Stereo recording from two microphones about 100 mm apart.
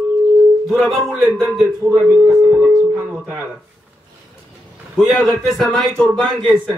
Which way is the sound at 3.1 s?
20° right (ahead or behind).